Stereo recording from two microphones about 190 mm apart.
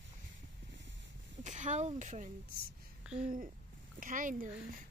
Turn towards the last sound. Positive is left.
turn(degrees=-45)  # may be behind; listen again after turning